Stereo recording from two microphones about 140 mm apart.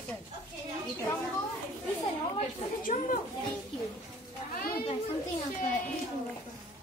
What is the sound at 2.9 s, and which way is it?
Speech, 50° left (ahead or behind).